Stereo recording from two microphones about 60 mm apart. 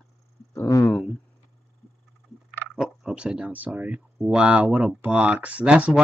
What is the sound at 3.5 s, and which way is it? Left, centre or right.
Speech, right.